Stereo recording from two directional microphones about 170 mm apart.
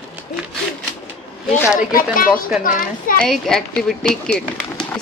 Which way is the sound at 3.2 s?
Centre (ahead or behind).